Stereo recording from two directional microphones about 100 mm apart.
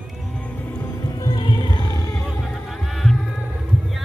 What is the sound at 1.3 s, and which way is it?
Music, 55° left (ahead or behind).